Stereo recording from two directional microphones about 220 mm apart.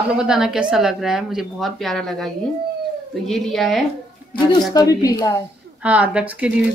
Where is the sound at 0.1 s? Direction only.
5° right (ahead or behind).